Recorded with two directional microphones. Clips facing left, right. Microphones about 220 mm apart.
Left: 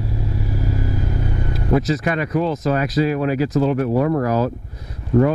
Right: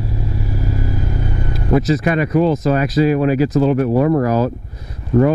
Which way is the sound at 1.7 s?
10° right (ahead or behind).